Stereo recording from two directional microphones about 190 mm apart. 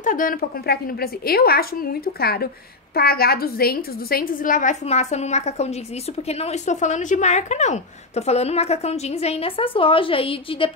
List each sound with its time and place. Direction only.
0.0 s a woman's voice: 45° left (ahead or behind); by 10.7 s 30° left (ahead or behind)